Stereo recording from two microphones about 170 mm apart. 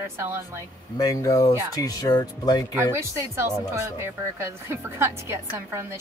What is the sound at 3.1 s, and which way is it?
A woman's voice, 15° right (ahead or behind).